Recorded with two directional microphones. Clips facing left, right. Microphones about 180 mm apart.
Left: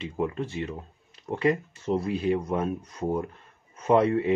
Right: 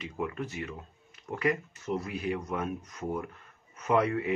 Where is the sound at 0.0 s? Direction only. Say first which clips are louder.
Left 5 dB; 30° left (ahead or behind).